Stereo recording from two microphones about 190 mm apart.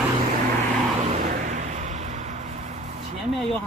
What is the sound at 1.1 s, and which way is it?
Vehicle, 45° right (ahead or behind).